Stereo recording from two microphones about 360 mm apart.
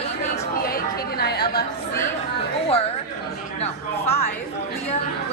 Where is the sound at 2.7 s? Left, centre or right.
Centre.